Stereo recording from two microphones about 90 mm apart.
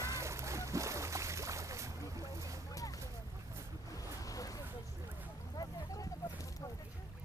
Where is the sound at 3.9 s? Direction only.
40° left (ahead or behind).